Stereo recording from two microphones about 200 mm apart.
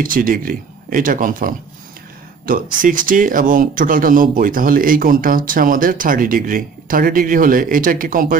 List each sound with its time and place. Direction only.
0.0 s speech: 45° right (ahead or behind)